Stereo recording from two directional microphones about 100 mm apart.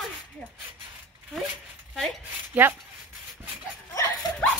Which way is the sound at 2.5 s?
15° right (ahead or behind).